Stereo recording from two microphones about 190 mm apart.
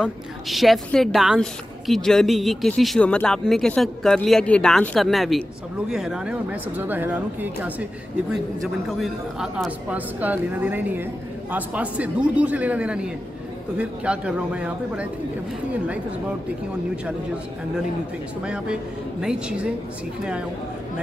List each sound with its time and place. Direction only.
0.0 s a woman's voice: centre (ahead or behind)
8.8 s a woman's voice: centre (ahead or behind)
18.4 s a woman's voice: 5° right (ahead or behind)